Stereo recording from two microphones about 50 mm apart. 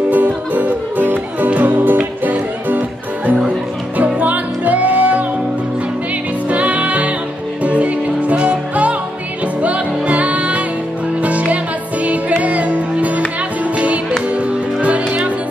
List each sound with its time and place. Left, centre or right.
0.1 s music: right
6.5 s music: right
14.3 s music: right